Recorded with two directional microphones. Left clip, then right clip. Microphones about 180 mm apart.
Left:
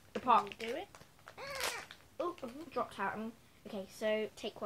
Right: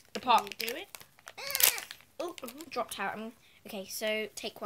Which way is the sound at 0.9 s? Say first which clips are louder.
Right 6 dB; 35° right (ahead or behind).